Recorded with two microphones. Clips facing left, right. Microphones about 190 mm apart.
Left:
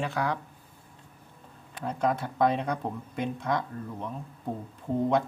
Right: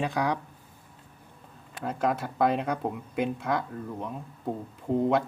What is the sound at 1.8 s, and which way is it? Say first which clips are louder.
Speech: even; 5° right (ahead or behind).